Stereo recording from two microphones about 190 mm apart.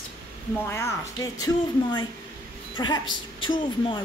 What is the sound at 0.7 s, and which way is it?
A woman's voice, 15° left (ahead or behind).